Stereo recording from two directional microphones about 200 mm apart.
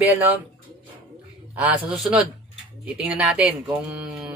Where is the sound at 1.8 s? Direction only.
Centre (ahead or behind).